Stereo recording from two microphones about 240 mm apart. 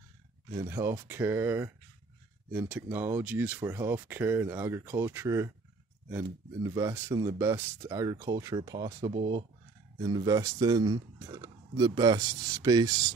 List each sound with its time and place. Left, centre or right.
0.5 s speech: centre